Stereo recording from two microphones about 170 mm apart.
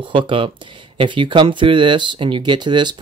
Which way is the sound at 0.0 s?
30° right (ahead or behind).